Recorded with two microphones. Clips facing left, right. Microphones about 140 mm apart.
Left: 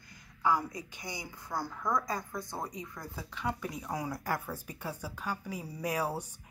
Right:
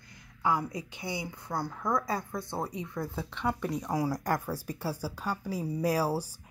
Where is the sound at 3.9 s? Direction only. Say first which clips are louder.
Right 5 dB; 35° right (ahead or behind).